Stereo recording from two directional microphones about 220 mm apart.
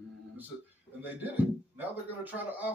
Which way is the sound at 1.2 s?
5° right (ahead or behind).